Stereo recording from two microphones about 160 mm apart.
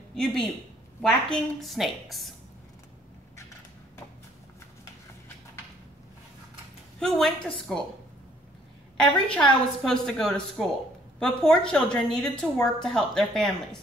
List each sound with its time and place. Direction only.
0.1 s a woman's voice: 5° left (ahead or behind)
7.0 s a woman's voice: 5° left (ahead or behind)
8.9 s a woman's voice: 5° left (ahead or behind)